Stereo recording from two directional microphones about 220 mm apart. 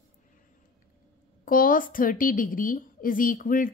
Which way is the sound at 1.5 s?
40° left (ahead or behind).